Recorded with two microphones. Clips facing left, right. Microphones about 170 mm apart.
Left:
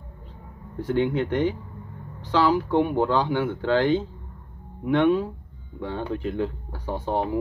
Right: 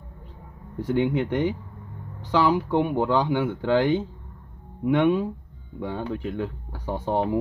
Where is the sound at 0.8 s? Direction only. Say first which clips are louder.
Even; 15° right (ahead or behind).